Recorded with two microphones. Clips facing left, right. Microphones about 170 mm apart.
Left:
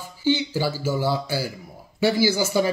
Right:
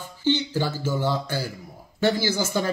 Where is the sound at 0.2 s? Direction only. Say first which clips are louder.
Left 1 dB; 10° left (ahead or behind).